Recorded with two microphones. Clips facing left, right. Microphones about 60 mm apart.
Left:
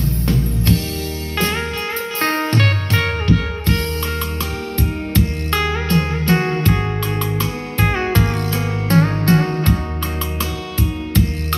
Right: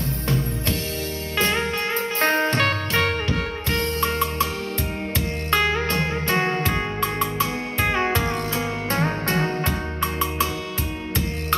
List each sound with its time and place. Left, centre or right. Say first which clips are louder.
1.3 s music: left 1 dB; centre